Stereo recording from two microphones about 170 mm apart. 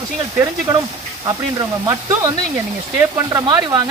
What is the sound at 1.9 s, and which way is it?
Speech, 15° right (ahead or behind).